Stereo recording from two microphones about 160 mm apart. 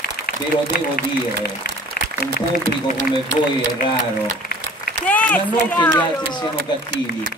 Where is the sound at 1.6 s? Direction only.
70° left (ahead or behind).